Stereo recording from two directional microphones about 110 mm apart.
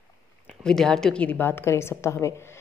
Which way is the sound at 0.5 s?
5° left (ahead or behind).